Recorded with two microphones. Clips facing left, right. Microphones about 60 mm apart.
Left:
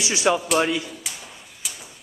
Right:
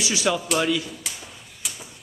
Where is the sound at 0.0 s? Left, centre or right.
Left.